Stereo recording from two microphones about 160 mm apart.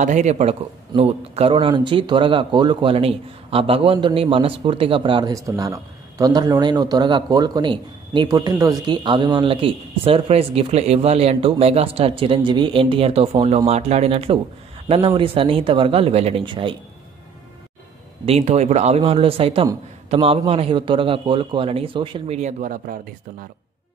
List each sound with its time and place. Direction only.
0.0 s speech: 50° right (ahead or behind); by 5.3 s 30° right (ahead or behind)
5.3 s speech: 20° right (ahead or behind)
18.2 s speech: 40° right (ahead or behind)
22.4 s speech: 55° right (ahead or behind)